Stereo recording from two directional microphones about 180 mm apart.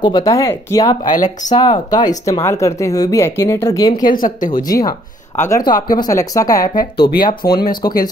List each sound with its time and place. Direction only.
0.0 s speech: 20° left (ahead or behind)
1.1 s speech: 45° left (ahead or behind)
1.5 s speech: 25° left (ahead or behind)
4.0 s speech: 50° left (ahead or behind)
4.6 s speech: 20° left (ahead or behind)